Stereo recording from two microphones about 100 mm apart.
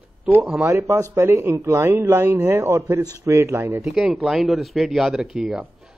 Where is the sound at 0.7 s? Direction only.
30° right (ahead or behind).